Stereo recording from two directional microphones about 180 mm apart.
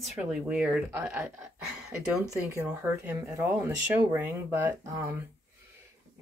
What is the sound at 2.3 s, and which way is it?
Speech, 15° right (ahead or behind).